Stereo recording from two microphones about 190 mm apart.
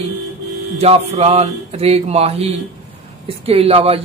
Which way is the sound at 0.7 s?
35° right (ahead or behind).